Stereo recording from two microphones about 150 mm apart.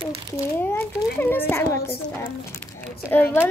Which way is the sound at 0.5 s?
15° left (ahead or behind).